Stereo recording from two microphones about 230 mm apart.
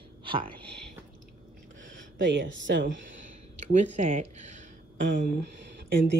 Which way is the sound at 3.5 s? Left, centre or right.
Right.